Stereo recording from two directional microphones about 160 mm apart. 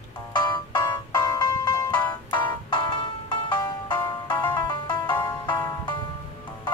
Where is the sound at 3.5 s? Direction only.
25° left (ahead or behind).